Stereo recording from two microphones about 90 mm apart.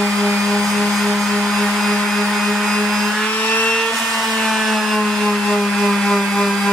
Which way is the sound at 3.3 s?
15° left (ahead or behind).